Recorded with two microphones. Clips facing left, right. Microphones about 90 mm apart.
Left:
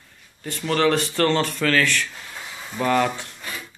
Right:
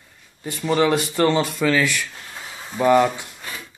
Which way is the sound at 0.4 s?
10° right (ahead or behind).